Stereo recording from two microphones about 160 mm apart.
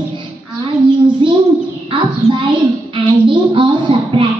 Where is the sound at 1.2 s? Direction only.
35° right (ahead or behind).